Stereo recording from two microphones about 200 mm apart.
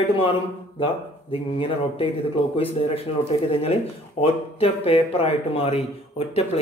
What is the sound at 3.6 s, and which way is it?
Speech, 30° left (ahead or behind).